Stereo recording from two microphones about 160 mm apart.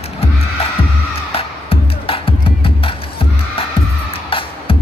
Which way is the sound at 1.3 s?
35° left (ahead or behind).